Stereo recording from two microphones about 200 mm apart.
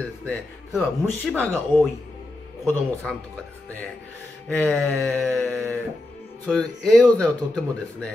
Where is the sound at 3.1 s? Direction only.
Centre (ahead or behind).